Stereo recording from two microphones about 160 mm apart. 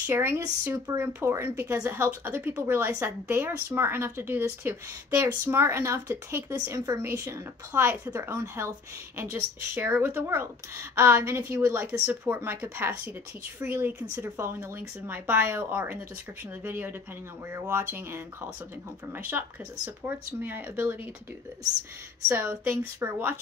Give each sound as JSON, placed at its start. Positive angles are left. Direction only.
{"t": 0.0, "sound": "speech", "side_deg": -15}
{"t": 22.3, "sound": "speech", "side_deg": -15}